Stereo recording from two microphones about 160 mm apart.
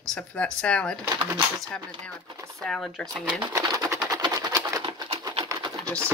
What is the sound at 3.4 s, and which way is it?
Pigeon, 25° right (ahead or behind).